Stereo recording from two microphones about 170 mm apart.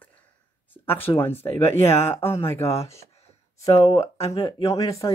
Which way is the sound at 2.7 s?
35° left (ahead or behind).